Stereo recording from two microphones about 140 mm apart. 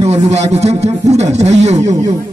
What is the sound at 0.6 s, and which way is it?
Speech, 50° right (ahead or behind).